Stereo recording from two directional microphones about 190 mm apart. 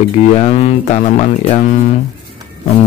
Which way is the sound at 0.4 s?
35° left (ahead or behind).